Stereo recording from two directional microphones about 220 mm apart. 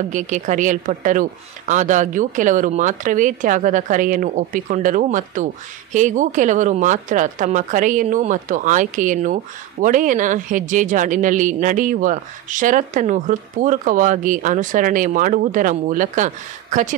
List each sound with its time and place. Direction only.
0.1 s speech: 35° right (ahead or behind)